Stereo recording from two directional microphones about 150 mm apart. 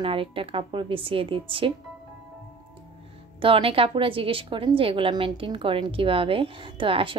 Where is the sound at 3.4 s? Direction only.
35° right (ahead or behind).